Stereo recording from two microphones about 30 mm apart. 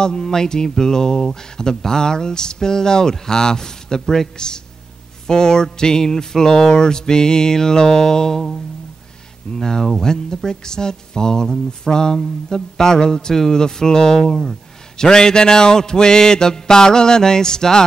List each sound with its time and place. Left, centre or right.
0.2 s speech: centre